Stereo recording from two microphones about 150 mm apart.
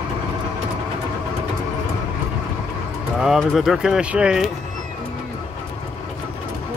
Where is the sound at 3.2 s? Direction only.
5° right (ahead or behind).